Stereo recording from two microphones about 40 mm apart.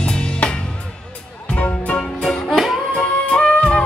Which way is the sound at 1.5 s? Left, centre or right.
Left.